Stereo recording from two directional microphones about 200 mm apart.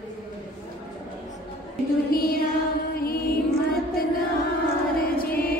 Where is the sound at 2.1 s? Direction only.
45° left (ahead or behind).